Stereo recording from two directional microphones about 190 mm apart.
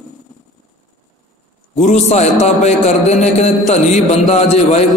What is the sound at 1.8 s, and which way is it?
A man's voice, 35° left (ahead or behind).